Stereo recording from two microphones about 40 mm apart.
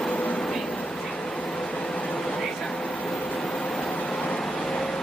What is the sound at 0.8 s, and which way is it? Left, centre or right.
Train, centre.